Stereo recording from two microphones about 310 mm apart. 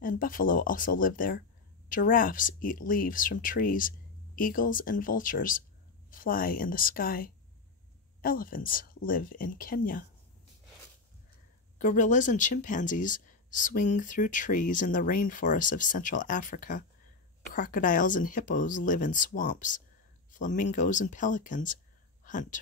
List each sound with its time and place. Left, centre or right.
0.0 s speech: left
11.8 s speech: left